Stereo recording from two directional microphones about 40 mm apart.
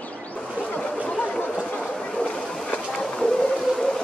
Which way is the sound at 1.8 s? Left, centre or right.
Left.